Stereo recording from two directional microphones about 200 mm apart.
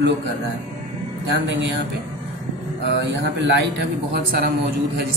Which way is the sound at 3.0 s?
60° right (ahead or behind).